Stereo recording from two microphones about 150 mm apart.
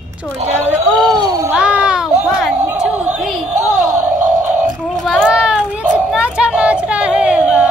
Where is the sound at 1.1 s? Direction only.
25° right (ahead or behind).